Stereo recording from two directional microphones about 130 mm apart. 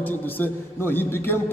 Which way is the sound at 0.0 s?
15° left (ahead or behind).